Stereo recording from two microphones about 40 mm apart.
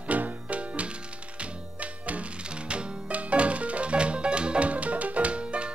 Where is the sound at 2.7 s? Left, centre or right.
Right.